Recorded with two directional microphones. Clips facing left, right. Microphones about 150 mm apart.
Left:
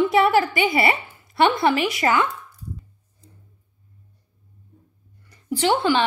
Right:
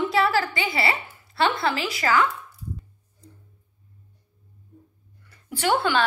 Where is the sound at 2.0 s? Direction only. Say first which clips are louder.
Right 1 dB; 25° left (ahead or behind).